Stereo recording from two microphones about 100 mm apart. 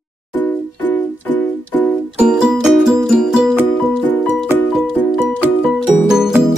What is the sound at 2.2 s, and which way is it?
Music, 10° right (ahead or behind).